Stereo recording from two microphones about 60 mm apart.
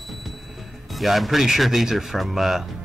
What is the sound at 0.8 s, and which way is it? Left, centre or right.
Speech, centre.